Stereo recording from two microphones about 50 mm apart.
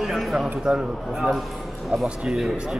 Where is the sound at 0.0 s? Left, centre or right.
Centre.